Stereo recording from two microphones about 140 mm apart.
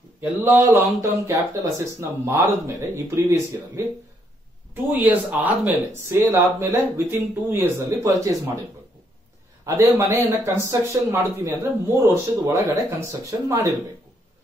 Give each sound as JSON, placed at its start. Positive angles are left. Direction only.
{"t": 0.2, "sound": "speech", "side_deg": -15}
{"t": 4.9, "sound": "speech", "side_deg": -10}
{"t": 9.7, "sound": "speech", "side_deg": -20}